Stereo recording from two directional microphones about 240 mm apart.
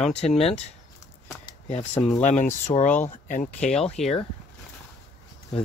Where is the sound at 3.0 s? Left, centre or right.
Left.